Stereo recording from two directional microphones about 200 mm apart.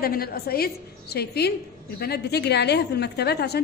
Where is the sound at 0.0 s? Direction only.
50° left (ahead or behind).